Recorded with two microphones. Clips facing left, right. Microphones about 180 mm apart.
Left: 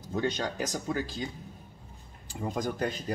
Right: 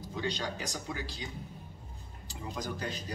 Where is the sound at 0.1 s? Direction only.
50° left (ahead or behind).